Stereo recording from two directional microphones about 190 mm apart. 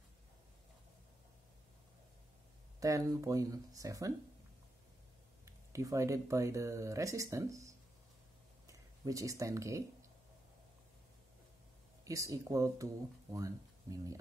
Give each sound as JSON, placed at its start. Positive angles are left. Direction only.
{"t": 2.8, "sound": "speech", "side_deg": -15}
{"t": 5.4, "sound": "speech", "side_deg": -15}
{"t": 12.0, "sound": "speech", "side_deg": -15}